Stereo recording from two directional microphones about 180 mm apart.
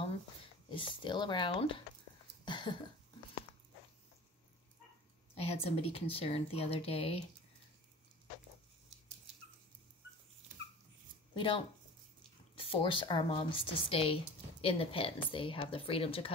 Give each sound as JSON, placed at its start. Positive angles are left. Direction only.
{"t": 0.0, "sound": "speech", "side_deg": 30}
{"t": 2.4, "sound": "a sound", "side_deg": 25}
{"t": 5.3, "sound": "speech", "side_deg": 35}
{"t": 11.3, "sound": "speech", "side_deg": 25}
{"t": 12.6, "sound": "speech", "side_deg": 30}